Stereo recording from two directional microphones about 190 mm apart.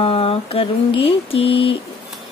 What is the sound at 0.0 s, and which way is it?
Speech, 30° left (ahead or behind).